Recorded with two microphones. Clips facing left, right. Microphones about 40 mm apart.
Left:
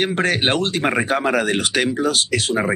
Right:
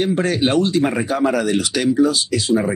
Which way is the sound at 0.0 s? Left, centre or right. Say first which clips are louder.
Right 1 dB; left.